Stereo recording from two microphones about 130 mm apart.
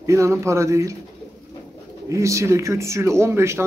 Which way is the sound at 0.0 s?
25° right (ahead or behind).